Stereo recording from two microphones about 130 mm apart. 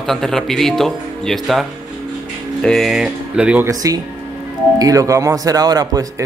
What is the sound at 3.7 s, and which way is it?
Speech, 25° right (ahead or behind).